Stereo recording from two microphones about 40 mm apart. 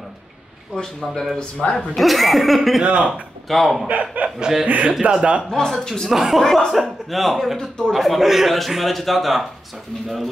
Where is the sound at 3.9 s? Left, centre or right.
Right.